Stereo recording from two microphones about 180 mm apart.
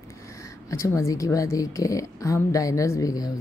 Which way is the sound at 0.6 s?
15° left (ahead or behind).